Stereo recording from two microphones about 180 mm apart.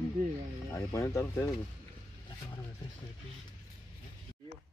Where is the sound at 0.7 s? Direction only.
15° left (ahead or behind).